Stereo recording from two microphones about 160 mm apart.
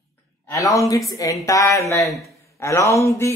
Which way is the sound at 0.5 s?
20° left (ahead or behind).